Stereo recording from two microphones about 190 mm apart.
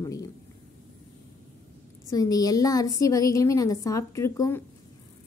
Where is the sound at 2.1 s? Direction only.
20° left (ahead or behind).